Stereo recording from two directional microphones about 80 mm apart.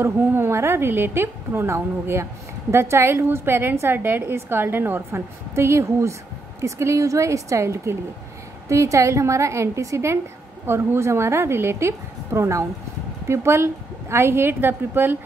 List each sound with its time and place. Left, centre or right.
0.0 s a woman's voice: right